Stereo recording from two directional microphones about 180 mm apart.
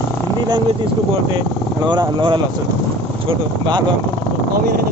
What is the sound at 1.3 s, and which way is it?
Speech, 25° right (ahead or behind).